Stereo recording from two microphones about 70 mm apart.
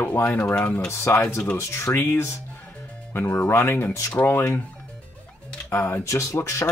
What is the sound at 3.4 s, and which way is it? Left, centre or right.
Speech, left.